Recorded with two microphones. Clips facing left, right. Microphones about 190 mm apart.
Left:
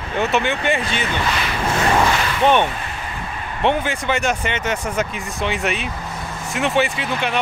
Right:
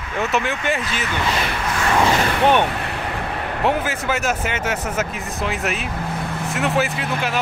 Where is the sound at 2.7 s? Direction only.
65° right (ahead or behind).